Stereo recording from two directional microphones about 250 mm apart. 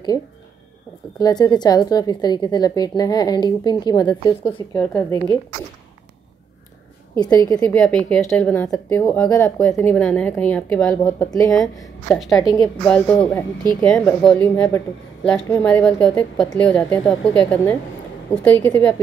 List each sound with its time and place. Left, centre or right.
1.2 s a woman's voice: centre
4.7 s a woman's voice: centre
7.2 s a woman's voice: centre
12.3 s a woman's voice: centre
12.8 s a woman's voice: centre